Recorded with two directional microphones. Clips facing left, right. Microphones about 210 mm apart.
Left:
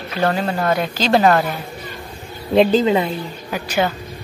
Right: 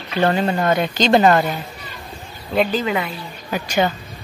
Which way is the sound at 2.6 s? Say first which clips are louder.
Left 5 dB; 25° left (ahead or behind).